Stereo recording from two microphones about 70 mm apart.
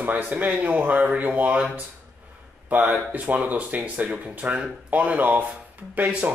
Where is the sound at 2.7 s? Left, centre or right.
Right.